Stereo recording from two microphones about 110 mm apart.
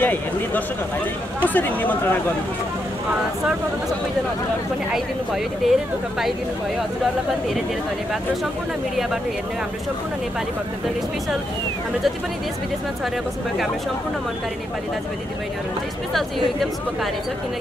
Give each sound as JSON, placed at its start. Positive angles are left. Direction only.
{"t": 0.0, "sound": "speech", "side_deg": 15}
{"t": 4.9, "sound": "a woman's voice", "side_deg": -5}